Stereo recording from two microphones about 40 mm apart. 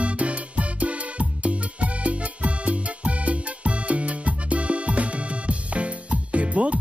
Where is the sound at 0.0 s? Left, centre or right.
Right.